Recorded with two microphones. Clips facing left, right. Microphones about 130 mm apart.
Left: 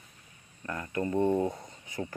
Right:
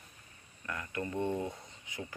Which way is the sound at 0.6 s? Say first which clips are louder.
Left 6 dB; 35° left (ahead or behind).